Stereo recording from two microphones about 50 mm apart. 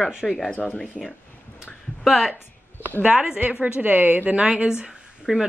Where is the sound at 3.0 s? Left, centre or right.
Centre.